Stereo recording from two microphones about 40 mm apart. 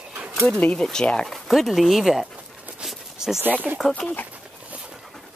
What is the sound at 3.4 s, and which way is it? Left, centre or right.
Speech, right.